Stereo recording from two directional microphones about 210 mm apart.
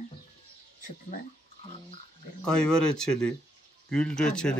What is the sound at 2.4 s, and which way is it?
Speech, 5° left (ahead or behind).